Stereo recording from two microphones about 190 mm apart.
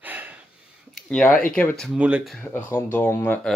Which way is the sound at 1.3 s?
45° left (ahead or behind).